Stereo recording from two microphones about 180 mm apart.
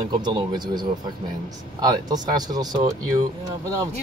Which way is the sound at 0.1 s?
25° right (ahead or behind).